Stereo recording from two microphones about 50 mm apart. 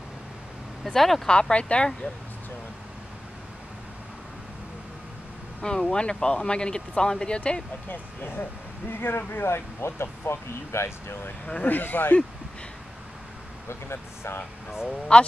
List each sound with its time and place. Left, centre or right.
0.8 s speech: centre
1.3 s speech: left
5.6 s speech: centre
7.9 s speech: left
11.4 s speech: left
11.7 s speech: left
13.7 s speech: left
15.1 s speech: left